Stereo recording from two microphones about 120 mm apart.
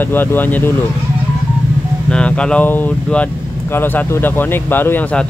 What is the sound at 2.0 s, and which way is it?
Speech, 10° left (ahead or behind).